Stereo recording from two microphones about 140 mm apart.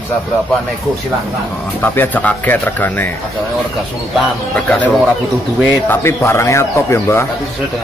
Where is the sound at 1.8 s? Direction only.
10° left (ahead or behind).